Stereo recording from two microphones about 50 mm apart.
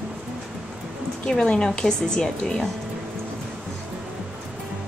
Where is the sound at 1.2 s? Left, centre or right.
Centre.